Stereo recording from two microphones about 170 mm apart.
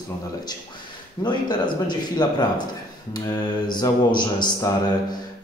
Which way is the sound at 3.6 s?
25° left (ahead or behind).